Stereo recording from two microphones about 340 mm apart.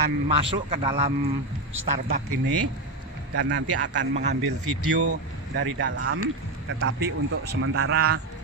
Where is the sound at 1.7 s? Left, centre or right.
Right.